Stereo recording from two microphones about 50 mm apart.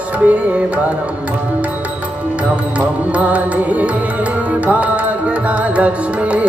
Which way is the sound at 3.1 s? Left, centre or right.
Right.